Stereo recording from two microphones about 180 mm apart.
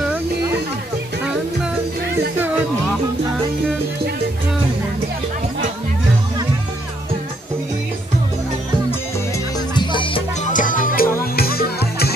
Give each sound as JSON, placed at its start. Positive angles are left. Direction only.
{"t": 9.8, "sound": "music", "side_deg": 25}
{"t": 10.5, "sound": "music", "side_deg": 50}